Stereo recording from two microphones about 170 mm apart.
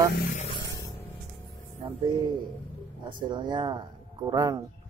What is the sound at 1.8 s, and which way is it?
Speech, 25° right (ahead or behind).